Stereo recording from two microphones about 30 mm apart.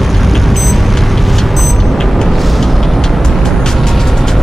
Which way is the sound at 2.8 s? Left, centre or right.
Centre.